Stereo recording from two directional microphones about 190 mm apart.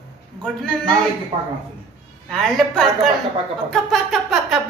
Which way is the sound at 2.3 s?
Centre (ahead or behind).